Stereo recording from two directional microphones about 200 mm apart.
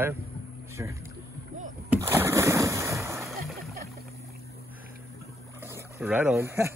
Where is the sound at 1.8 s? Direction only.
10° right (ahead or behind).